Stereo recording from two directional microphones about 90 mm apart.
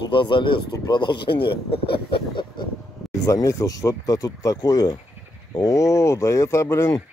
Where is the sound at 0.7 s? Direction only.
55° left (ahead or behind).